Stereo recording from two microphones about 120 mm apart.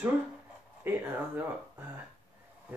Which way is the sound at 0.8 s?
20° right (ahead or behind).